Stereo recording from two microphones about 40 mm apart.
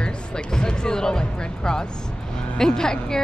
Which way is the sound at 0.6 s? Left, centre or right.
Centre.